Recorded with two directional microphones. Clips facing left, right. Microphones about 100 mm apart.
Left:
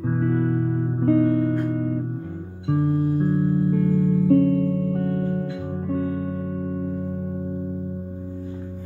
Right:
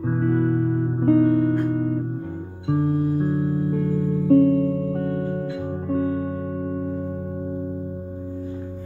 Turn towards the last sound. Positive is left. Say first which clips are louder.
# even
turn(degrees=-30)  # may be behind; listen again after turning